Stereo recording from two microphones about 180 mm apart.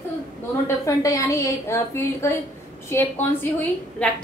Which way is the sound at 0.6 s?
20° left (ahead or behind).